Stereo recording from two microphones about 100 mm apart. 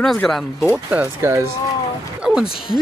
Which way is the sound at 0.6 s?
10° right (ahead or behind).